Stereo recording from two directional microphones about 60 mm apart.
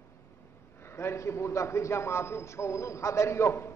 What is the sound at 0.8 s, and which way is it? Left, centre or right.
A man's voice, left.